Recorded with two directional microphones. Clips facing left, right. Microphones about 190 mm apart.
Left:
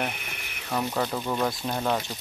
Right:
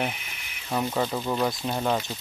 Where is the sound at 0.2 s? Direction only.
55° left (ahead or behind).